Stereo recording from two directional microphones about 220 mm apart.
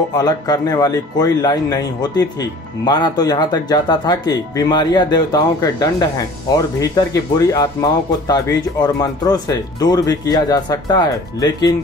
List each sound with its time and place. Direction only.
0.2 s speech: 15° left (ahead or behind)